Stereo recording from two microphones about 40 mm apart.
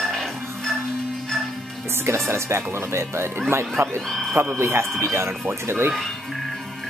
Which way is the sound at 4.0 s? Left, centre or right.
Centre.